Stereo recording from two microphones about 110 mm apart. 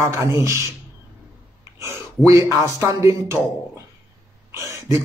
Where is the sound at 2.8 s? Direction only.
30° right (ahead or behind).